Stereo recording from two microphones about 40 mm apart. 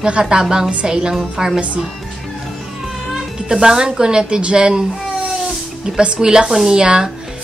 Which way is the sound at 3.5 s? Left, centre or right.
Centre.